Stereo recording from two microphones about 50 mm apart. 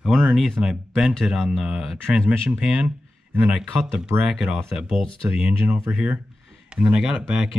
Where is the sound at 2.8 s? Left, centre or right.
Right.